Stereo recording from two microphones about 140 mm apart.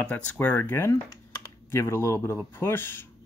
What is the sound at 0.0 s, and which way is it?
Speech, 10° left (ahead or behind).